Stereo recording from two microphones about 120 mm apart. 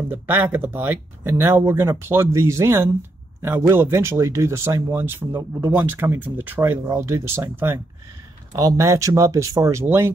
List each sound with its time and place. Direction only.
0.1 s speech: 15° right (ahead or behind)
8.5 s speech: 30° right (ahead or behind)